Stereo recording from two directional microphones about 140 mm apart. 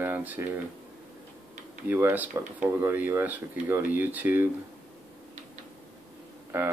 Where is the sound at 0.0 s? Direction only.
10° right (ahead or behind).